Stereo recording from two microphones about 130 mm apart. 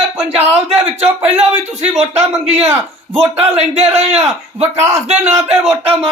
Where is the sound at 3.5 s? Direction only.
55° right (ahead or behind).